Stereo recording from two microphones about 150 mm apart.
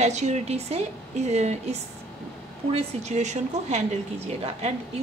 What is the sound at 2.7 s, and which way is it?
A woman's voice, 45° right (ahead or behind).